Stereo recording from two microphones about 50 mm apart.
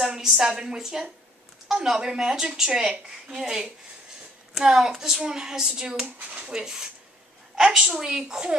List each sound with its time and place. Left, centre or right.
0.0 s a child's voice: centre
6.0 s speech: right
6.4 s a child's voice: centre